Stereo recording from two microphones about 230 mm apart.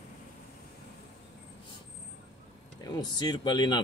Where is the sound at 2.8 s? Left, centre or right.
Centre.